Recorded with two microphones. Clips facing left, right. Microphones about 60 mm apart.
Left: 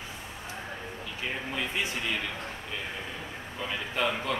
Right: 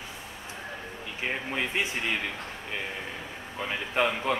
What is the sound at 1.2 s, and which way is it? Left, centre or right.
Speech, right.